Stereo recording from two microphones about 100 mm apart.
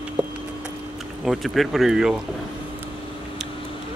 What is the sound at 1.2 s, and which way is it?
Speech, centre (ahead or behind).